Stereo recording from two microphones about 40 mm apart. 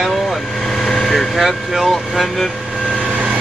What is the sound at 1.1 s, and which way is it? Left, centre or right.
Speech, centre.